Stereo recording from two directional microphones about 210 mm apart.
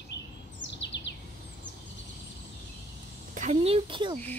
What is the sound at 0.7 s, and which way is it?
Bird, 55° left (ahead or behind).